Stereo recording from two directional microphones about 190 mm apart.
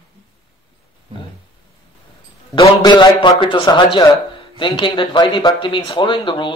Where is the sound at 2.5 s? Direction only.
20° left (ahead or behind).